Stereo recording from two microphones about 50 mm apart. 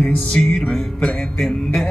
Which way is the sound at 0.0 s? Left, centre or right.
Centre.